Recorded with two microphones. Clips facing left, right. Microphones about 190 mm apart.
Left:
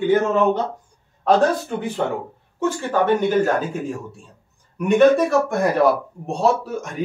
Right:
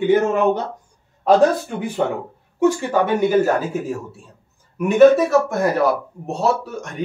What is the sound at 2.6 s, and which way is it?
A woman's voice, 10° right (ahead or behind).